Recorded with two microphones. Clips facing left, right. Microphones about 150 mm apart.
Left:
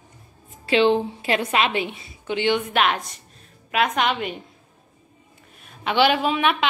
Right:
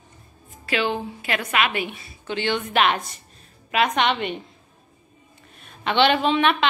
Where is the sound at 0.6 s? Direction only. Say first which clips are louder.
Left 6 dB; 30° left (ahead or behind).